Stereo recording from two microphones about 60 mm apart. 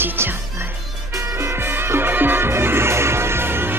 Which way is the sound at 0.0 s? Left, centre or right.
Right.